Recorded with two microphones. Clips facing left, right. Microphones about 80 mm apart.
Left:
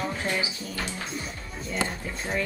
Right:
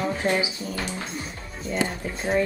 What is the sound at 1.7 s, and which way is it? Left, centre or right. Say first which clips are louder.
Speech: right 4 dB; right.